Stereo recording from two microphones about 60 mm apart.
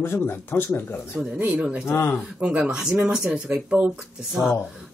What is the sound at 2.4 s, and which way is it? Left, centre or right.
Speech, centre.